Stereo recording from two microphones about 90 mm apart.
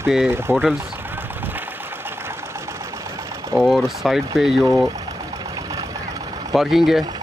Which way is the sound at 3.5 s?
Centre (ahead or behind).